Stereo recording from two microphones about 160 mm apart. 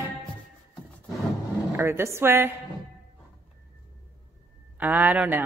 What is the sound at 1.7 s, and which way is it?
Speech, 15° right (ahead or behind).